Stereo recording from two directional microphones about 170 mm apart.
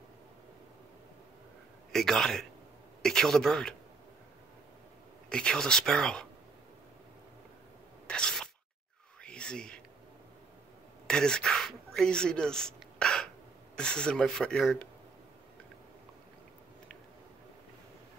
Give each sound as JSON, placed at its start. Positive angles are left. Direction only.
{"t": 1.9, "sound": "speech", "side_deg": 5}
{"t": 5.3, "sound": "speech", "side_deg": 5}
{"t": 8.1, "sound": "a sound", "side_deg": 5}
{"t": 11.1, "sound": "speech", "side_deg": 5}